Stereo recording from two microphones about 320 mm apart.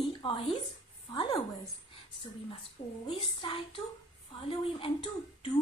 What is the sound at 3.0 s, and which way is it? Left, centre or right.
Speech, centre.